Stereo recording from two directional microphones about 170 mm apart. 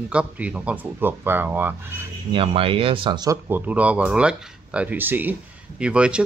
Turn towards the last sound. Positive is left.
turn(degrees=-5)  # may be behind; listen again after turning